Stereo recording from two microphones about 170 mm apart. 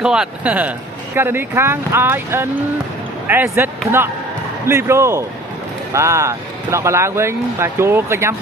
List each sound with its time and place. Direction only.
0.0 s speech: 5° right (ahead or behind)